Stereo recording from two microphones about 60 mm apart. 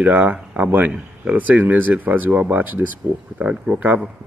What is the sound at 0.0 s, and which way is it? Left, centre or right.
A man's voice, right.